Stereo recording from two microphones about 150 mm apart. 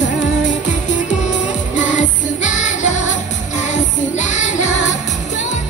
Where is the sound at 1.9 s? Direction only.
55° left (ahead or behind).